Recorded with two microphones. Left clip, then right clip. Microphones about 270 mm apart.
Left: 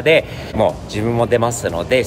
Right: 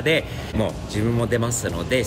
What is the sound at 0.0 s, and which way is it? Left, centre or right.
Speech, centre.